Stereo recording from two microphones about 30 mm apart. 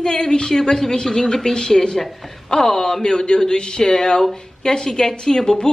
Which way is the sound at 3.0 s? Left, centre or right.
Left.